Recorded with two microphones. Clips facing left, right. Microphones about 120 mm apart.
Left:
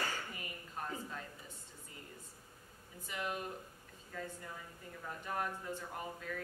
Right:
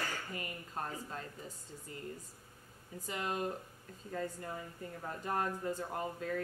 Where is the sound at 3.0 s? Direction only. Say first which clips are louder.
Right 3 dB; 35° right (ahead or behind).